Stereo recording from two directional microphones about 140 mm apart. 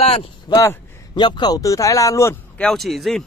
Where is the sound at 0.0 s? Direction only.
45° left (ahead or behind).